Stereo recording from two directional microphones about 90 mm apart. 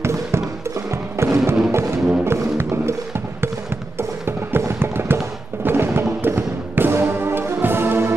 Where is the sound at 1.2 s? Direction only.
30° right (ahead or behind).